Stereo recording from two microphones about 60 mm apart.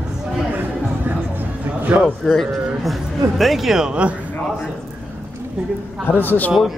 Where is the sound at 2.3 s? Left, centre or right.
Centre.